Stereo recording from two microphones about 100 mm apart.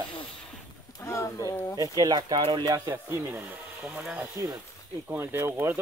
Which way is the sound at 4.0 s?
5° right (ahead or behind).